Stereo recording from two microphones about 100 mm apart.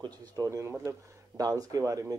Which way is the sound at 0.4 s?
30° right (ahead or behind).